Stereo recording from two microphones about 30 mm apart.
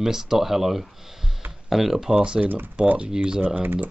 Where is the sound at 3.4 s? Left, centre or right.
Right.